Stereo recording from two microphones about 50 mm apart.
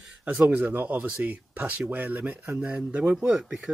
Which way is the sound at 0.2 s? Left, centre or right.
Right.